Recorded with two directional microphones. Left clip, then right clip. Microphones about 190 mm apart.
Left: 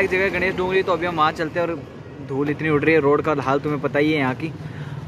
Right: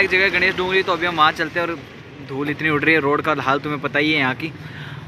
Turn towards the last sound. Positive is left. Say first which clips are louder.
# right 2 dB
turn(degrees=5)  # may be behind; listen again after turning